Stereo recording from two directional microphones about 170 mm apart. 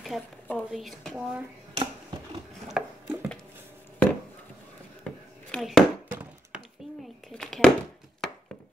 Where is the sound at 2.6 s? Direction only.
Centre (ahead or behind).